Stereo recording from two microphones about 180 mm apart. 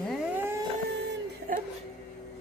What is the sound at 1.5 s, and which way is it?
Whimper, 50° right (ahead or behind).